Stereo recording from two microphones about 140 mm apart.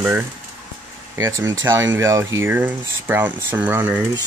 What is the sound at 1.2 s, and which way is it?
Speech, 20° right (ahead or behind).